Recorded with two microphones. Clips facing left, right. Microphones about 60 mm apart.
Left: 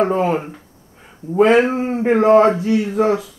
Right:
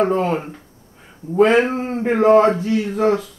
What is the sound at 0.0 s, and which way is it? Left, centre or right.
Speech, centre.